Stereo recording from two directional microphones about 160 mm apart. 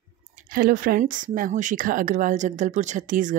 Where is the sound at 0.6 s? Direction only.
65° right (ahead or behind).